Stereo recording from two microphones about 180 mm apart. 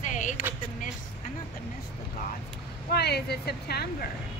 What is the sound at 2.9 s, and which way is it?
Speech, 65° left (ahead or behind).